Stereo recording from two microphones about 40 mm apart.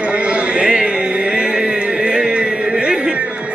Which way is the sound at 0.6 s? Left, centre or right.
Centre.